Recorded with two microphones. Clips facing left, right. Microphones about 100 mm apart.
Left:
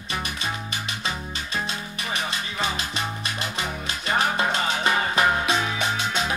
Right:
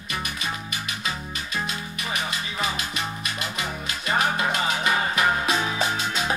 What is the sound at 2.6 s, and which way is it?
Music, 30° left (ahead or behind).